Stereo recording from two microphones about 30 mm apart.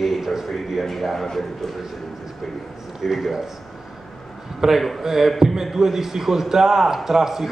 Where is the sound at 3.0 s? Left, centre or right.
Centre.